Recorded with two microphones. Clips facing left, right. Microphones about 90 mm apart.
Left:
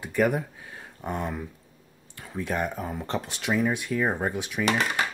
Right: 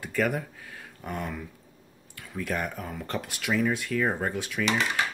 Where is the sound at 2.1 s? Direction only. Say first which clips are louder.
Left 2 dB; 25° left (ahead or behind).